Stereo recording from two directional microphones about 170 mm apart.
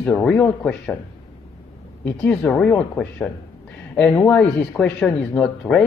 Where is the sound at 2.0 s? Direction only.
10° left (ahead or behind).